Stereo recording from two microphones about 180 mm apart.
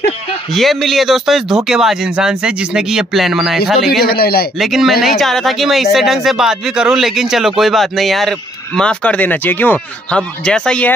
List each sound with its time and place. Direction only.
0.5 s speech: centre (ahead or behind)
4.0 s a man's voice: 60° left (ahead or behind)
4.6 s speech: centre (ahead or behind)